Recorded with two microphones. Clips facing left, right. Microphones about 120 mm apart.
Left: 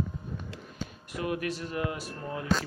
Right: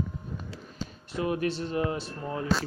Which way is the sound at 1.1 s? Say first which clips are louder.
Right 4 dB; 30° right (ahead or behind).